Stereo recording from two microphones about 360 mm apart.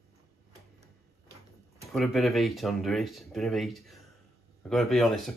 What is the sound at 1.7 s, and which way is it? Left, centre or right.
Speech, centre.